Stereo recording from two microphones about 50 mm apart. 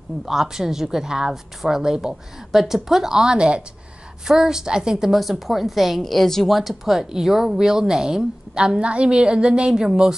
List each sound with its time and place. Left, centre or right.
0.2 s a woman's voice: centre
5.1 s a woman's voice: centre